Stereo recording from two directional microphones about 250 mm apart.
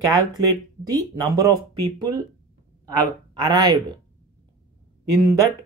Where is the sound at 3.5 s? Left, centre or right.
Centre.